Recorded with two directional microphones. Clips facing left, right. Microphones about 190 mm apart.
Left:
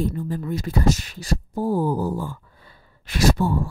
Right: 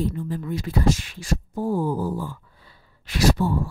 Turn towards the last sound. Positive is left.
turn(degrees=45)  # may be behind; listen again after turning